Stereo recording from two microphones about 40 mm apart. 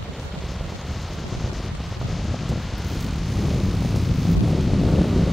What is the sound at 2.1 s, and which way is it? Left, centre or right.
Wind, centre.